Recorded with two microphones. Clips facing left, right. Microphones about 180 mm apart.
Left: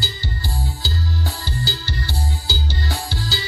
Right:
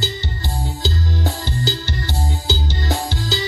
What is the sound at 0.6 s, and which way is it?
Music, 20° right (ahead or behind).